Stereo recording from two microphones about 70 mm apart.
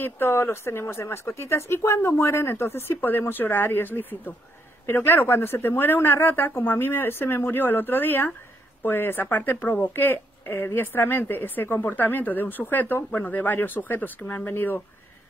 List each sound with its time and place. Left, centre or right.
0.0 s speech: left